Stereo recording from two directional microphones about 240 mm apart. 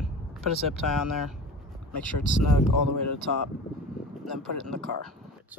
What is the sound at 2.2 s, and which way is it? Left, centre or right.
Speech, left.